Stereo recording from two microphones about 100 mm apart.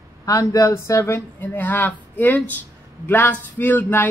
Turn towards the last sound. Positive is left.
turn(degrees=20)  # may be behind; listen again after turning